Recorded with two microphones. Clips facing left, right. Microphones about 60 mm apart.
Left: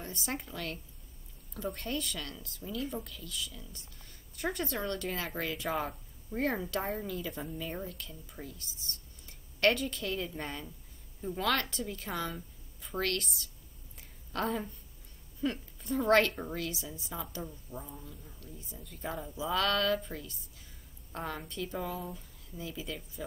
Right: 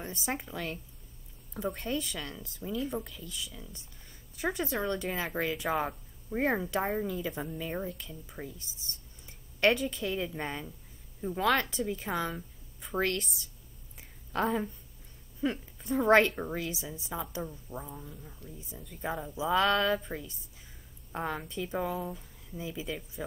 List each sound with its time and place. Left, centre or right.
0.2 s speech: centre
8.4 s a woman's voice: right
13.9 s a sound: centre
15.4 s a woman's voice: right
17.2 s a woman's voice: centre